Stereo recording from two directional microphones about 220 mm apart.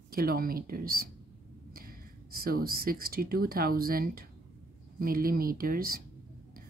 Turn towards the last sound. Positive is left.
turn(degrees=-40)  # may be behind; listen again after turning